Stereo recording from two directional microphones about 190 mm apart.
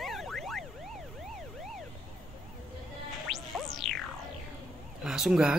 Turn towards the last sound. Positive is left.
turn(degrees=-5)  # may be behind; listen again after turning